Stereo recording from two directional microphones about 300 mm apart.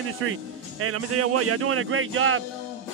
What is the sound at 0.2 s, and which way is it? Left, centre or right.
Speech, right.